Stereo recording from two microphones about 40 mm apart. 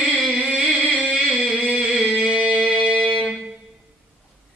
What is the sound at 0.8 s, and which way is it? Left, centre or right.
Music, right.